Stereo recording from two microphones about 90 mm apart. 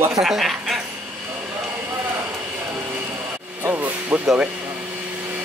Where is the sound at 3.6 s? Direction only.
25° right (ahead or behind).